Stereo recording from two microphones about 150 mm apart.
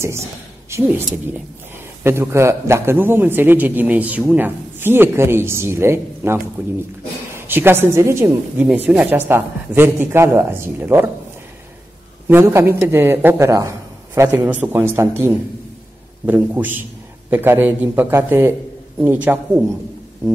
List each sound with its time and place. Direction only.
0.7 s a woman's voice: 15° right (ahead or behind)
2.0 s a man's voice: 15° right (ahead or behind)
12.3 s a man's voice: 15° right (ahead or behind)